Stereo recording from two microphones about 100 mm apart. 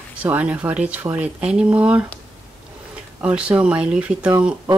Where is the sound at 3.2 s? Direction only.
10° right (ahead or behind).